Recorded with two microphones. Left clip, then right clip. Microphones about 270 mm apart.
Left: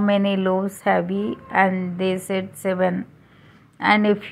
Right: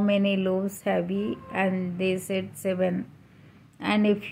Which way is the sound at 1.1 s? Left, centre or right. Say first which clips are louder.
Left 4 dB; left.